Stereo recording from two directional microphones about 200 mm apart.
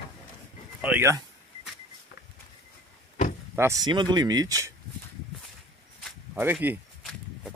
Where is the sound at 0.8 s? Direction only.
10° right (ahead or behind).